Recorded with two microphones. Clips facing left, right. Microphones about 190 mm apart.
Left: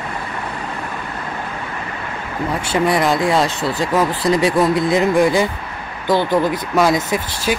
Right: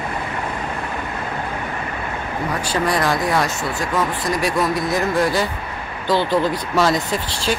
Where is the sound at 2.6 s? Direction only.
25° left (ahead or behind).